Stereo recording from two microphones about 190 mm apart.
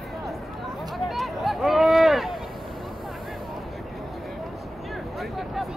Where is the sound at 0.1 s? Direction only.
Centre (ahead or behind).